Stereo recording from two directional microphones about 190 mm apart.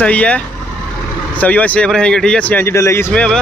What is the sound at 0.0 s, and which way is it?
Speech, 5° left (ahead or behind).